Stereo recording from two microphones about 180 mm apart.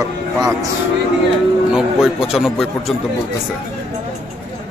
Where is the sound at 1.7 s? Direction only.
5° right (ahead or behind).